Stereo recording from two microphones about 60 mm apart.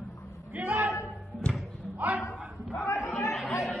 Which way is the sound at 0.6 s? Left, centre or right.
Right.